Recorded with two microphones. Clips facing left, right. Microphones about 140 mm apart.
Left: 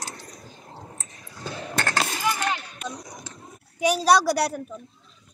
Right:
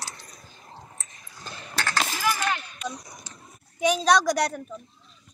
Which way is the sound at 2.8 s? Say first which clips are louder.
Right 1 dB; 55° left (ahead or behind).